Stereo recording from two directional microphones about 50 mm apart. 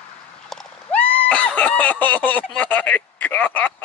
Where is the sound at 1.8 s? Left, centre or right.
Left.